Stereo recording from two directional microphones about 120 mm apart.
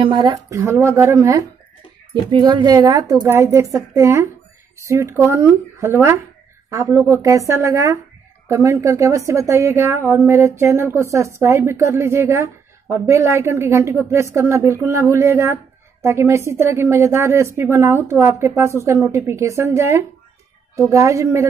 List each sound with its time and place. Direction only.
0.0 s speech: 40° right (ahead or behind)
0.3 s a woman's voice: 25° right (ahead or behind)
2.3 s a woman's voice: 35° right (ahead or behind)